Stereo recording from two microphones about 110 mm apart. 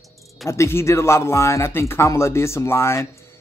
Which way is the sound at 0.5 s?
25° left (ahead or behind).